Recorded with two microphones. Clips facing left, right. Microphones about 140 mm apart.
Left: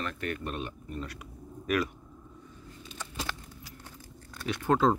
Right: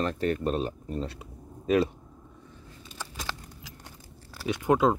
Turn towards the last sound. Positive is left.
turn(degrees=-10)  # may be behind; listen again after turning